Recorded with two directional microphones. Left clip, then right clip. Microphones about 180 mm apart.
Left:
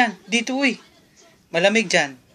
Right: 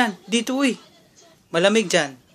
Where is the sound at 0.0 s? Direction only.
35° right (ahead or behind).